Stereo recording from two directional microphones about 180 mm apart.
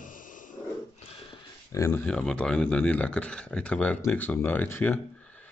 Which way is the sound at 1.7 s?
15° left (ahead or behind).